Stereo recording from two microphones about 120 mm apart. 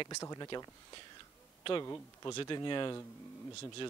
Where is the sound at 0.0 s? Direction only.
30° left (ahead or behind).